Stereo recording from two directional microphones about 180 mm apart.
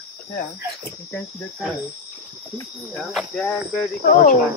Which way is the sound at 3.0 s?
Centre (ahead or behind).